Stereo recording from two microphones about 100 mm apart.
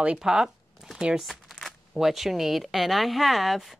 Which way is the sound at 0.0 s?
10° right (ahead or behind).